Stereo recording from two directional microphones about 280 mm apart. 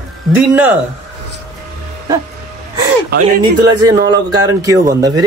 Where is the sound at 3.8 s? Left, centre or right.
Centre.